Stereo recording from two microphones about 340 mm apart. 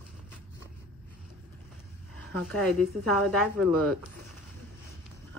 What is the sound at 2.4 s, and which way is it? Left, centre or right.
A woman's voice, centre.